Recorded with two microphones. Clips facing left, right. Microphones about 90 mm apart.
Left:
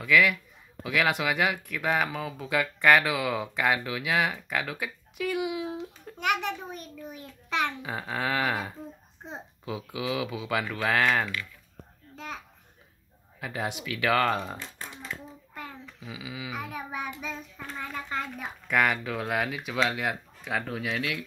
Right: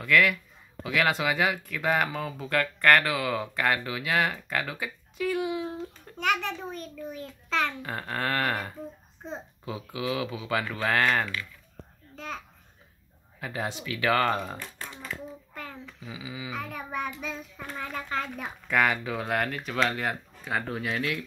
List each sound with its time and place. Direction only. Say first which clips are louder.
0.0 s a child's voice: even; 5° left (ahead or behind)
7.8 s speech: even; 5° left (ahead or behind)
13.4 s speech: even; centre (ahead or behind)
14.6 s speech: right 1 dB; 20° left (ahead or behind)
15.5 s speech: right 1 dB; 5° left (ahead or behind)